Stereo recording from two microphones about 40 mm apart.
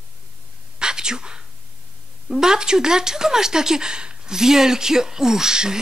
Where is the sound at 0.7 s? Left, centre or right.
Centre.